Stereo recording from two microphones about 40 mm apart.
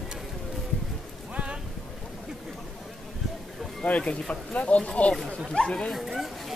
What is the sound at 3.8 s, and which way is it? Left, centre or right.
Speech, left.